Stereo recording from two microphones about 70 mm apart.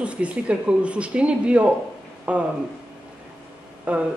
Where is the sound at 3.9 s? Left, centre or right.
Centre.